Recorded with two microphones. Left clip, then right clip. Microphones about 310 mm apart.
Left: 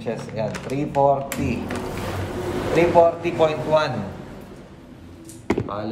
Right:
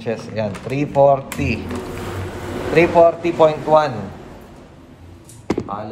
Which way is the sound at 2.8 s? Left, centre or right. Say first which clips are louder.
Right 4 dB; right.